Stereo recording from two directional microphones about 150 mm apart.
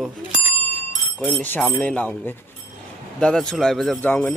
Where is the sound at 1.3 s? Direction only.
10° left (ahead or behind).